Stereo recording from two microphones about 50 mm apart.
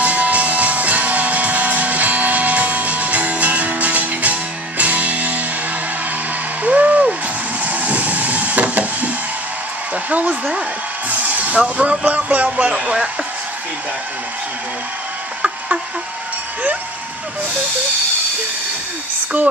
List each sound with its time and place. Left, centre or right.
0.0 s music: right
6.6 s a sound: right
10.0 s a woman's voice: right